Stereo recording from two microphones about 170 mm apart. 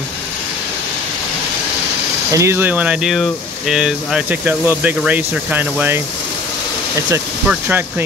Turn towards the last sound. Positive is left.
turn(degrees=-10)  # may be behind; listen again after turning